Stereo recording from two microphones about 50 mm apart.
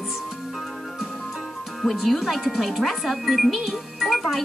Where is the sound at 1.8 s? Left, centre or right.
Centre.